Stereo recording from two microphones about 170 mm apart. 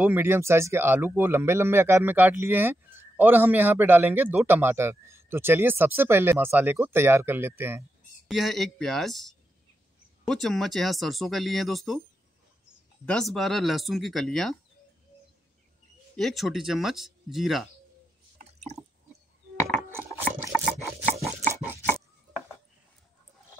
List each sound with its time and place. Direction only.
0.0 s speech: 10° right (ahead or behind)
8.3 s speech: centre (ahead or behind)
13.0 s speech: 5° left (ahead or behind)
16.2 s speech: centre (ahead or behind)
20.2 s a sound: 10° right (ahead or behind)
21.9 s chopping: 20° right (ahead or behind)